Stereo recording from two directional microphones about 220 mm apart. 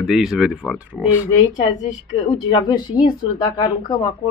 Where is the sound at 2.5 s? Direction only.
20° left (ahead or behind).